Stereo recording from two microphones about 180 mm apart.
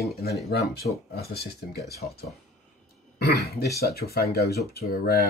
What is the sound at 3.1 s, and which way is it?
Speech, 60° left (ahead or behind).